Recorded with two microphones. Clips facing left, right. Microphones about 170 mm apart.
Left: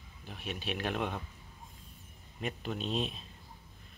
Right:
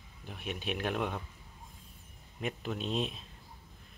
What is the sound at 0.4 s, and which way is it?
Speech, 55° right (ahead or behind).